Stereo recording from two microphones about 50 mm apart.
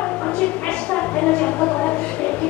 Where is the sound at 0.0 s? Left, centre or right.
Left.